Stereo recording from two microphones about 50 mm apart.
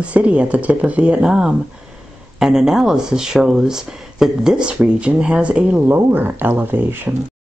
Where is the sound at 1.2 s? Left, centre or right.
Centre.